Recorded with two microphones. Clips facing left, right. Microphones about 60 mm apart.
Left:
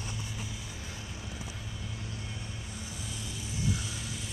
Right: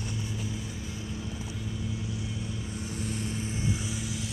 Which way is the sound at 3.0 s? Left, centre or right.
Right.